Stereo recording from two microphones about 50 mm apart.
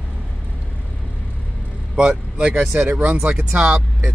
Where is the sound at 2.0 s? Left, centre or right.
Right.